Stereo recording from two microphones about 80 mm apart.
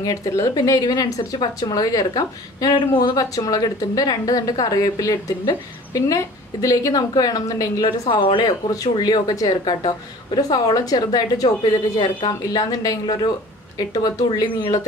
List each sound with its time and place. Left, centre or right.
0.0 s speech: left
7.8 s a woman's voice: left
8.5 s a woman's voice: left
9.7 s a woman's voice: left